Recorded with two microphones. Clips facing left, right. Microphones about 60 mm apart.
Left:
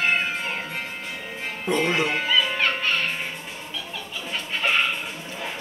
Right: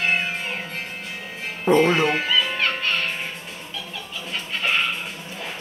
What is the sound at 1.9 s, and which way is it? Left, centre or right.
Speech, centre.